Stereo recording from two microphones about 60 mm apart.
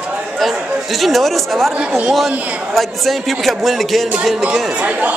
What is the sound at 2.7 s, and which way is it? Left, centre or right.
Speech, centre.